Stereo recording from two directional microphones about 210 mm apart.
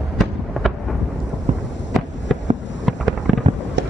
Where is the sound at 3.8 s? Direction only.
55° right (ahead or behind).